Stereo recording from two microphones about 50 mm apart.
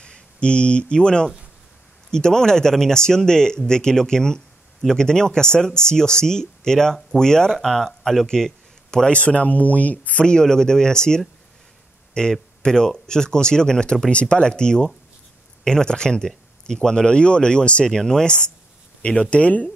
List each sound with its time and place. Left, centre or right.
0.0 s speech: centre
10.2 s speech: centre